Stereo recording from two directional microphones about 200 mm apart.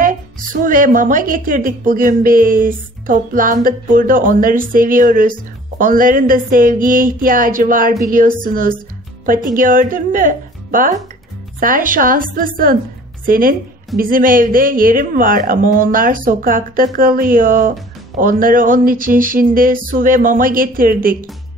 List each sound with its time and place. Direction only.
0.0 s a woman's voice: 45° right (ahead or behind)